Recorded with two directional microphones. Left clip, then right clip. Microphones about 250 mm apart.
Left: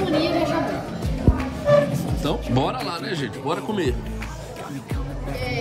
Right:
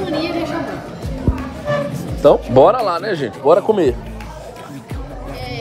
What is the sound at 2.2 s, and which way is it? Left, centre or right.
Speech, centre.